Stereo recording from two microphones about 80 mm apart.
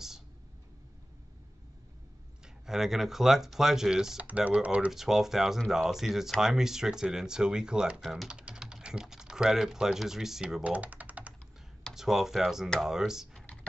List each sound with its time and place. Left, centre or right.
2.4 s speech: centre
4.2 s speech: centre
4.9 s speech: centre
8.0 s speech: centre
8.3 s speech: centre
10.6 s typing: centre
11.9 s speech: centre